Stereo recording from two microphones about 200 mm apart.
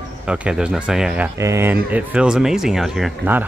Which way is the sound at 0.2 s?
5° right (ahead or behind).